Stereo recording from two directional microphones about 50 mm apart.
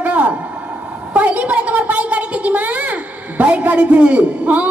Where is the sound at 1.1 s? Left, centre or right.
Right.